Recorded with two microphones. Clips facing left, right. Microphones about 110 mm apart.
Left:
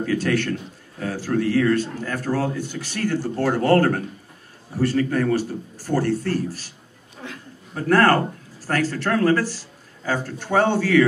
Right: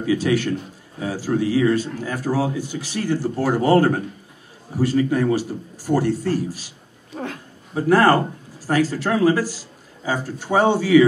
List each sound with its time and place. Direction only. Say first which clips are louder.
0.0 s a man's voice: right 2 dB; 10° right (ahead or behind)
7.2 s a sound: right 8 dB; 50° right (ahead or behind)
7.7 s a man's voice: right 2 dB; 10° right (ahead or behind)